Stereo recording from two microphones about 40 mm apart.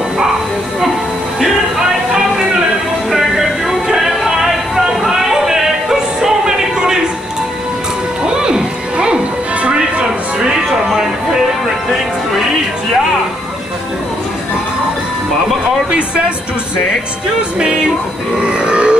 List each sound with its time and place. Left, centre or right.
3.1 s music: centre
8.2 s music: centre
17.4 s music: right
18.4 s burping: right